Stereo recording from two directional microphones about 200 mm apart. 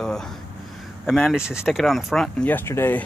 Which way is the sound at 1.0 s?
Centre (ahead or behind).